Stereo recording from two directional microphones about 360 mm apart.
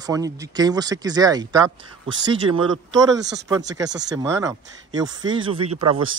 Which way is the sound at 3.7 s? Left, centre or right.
Centre.